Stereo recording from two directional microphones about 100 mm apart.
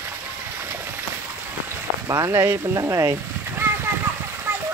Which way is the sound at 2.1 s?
30° right (ahead or behind).